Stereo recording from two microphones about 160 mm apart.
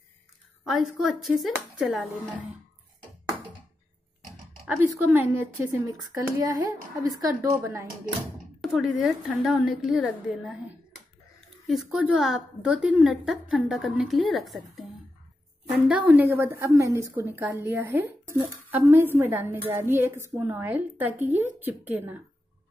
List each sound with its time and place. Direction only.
1.2 s a woman's voice: centre (ahead or behind)
4.6 s a woman's voice: 15° right (ahead or behind)
8.5 s a woman's voice: centre (ahead or behind)
11.6 s a woman's voice: centre (ahead or behind)